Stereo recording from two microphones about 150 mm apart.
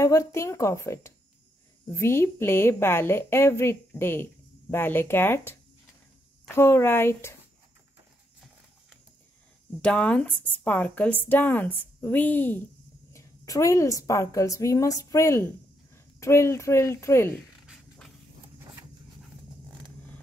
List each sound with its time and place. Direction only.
0.0 s a woman's voice: 20° left (ahead or behind)
9.8 s a woman's voice: 5° left (ahead or behind)
17.6 s a sound: centre (ahead or behind)